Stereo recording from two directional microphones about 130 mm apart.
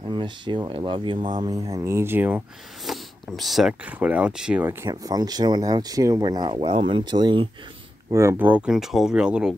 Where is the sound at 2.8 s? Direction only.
Centre (ahead or behind).